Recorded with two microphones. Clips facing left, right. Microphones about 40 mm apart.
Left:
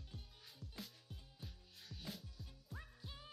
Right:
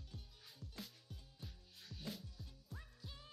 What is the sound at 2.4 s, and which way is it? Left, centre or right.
Music, centre.